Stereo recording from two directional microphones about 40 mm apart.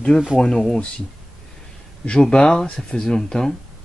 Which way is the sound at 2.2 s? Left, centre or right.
Centre.